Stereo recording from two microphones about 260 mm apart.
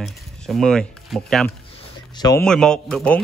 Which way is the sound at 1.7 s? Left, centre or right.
Centre.